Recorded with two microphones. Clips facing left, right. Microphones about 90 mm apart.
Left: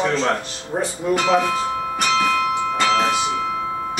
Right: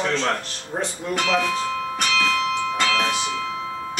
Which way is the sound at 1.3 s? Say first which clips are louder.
Left 3 dB; 25° left (ahead or behind).